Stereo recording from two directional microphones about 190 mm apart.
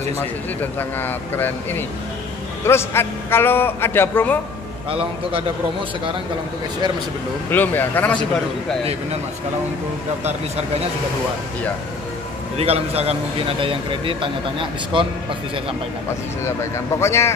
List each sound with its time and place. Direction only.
0.2 s a man's voice: 10° left (ahead or behind)
7.5 s a man's voice: 10° left (ahead or behind)
12.5 s a man's voice: 30° right (ahead or behind)
16.4 s a man's voice: 15° left (ahead or behind)